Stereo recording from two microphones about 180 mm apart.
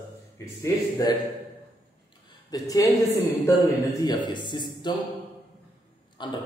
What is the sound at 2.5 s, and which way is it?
A man's voice, 20° left (ahead or behind).